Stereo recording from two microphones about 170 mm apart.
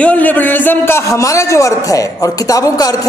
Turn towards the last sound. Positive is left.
turn(degrees=20)  # may be behind; listen again after turning